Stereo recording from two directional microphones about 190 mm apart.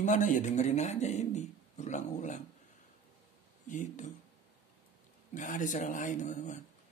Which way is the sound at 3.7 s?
40° left (ahead or behind).